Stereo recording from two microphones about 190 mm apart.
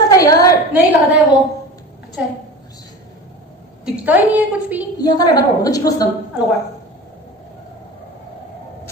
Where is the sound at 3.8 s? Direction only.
10° right (ahead or behind).